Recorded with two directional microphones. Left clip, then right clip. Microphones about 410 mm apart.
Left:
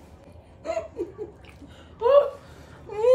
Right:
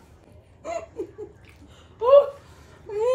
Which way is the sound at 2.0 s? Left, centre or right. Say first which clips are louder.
Right 3 dB; centre.